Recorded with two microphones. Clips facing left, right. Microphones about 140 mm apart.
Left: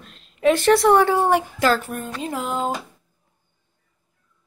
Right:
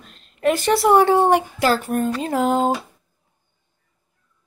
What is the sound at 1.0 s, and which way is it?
Speech, 30° right (ahead or behind).